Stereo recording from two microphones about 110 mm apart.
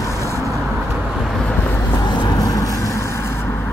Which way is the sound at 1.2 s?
10° left (ahead or behind).